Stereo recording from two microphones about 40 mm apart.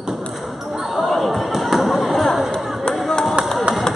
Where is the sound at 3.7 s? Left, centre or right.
Right.